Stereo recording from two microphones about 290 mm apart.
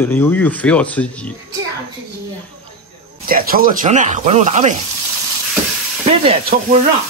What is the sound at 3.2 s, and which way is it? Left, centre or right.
Speech, right.